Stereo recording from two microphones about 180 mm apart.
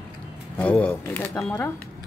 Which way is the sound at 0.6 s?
5° left (ahead or behind).